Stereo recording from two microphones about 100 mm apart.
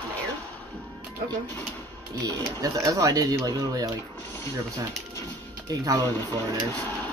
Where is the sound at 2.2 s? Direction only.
35° right (ahead or behind).